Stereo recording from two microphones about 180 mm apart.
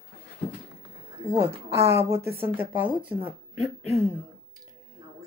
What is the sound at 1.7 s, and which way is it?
A woman's voice, 15° right (ahead or behind).